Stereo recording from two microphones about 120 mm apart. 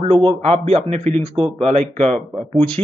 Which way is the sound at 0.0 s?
45° right (ahead or behind).